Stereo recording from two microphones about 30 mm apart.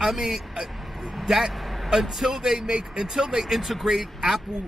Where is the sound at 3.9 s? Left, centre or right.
Centre.